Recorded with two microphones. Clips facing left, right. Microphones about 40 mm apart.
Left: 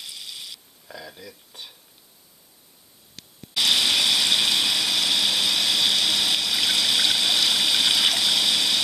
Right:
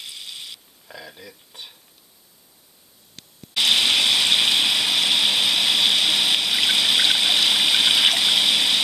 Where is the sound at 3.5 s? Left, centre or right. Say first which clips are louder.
Right 2 dB; right.